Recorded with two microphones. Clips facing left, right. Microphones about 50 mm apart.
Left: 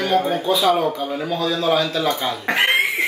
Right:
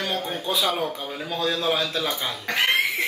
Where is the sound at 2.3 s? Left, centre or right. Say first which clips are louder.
Left 2 dB; left.